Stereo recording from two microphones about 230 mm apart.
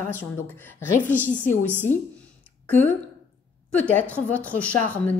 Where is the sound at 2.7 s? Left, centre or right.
Centre.